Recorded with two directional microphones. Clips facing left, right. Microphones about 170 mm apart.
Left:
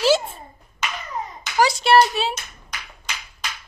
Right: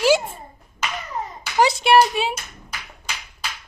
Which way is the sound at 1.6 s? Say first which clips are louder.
Right 1 dB; 15° right (ahead or behind).